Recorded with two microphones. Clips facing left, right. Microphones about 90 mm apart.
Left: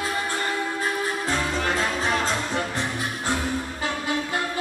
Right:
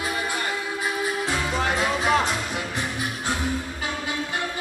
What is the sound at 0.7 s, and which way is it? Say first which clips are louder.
Music: even; 10° right (ahead or behind).